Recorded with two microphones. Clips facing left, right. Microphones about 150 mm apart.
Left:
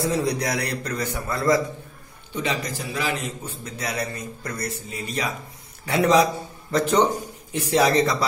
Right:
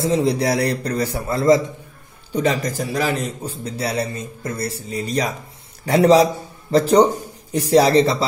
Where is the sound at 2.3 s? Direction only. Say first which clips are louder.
Right 7 dB; 45° right (ahead or behind).